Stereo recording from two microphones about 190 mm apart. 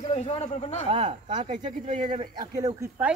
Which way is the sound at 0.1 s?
35° left (ahead or behind).